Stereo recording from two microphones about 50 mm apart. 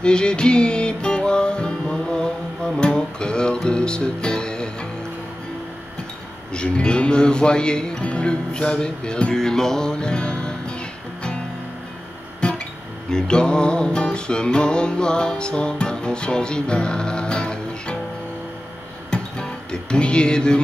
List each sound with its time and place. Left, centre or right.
0.0 s music: centre
6.5 s speech: centre
8.0 s music: left
12.4 s guitar: left
13.1 s music: centre
19.0 s music: centre